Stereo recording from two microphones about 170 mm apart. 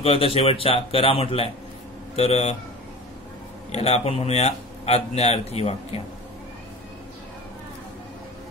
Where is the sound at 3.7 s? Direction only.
35° left (ahead or behind).